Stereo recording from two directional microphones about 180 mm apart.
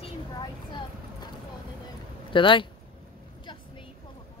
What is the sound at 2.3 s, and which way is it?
Speech, 30° left (ahead or behind).